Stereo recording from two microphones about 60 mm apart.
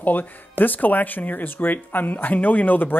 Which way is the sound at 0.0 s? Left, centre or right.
Left.